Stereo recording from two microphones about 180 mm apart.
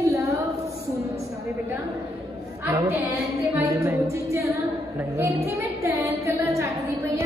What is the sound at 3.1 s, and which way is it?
A woman's voice, 15° right (ahead or behind).